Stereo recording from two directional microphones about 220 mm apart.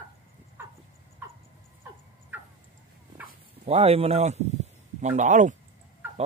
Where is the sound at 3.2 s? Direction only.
30° right (ahead or behind).